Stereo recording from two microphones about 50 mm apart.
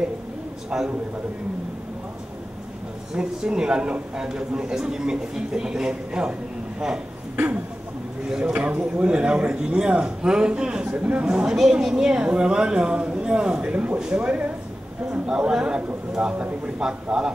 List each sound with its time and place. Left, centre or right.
0.7 s a woman's voice: centre
3.2 s a woman's voice: centre
8.3 s a woman's voice: centre
8.5 s a woman's voice: right
15.2 s a woman's voice: centre